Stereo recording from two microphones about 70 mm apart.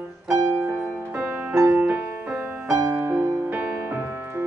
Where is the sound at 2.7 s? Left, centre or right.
Right.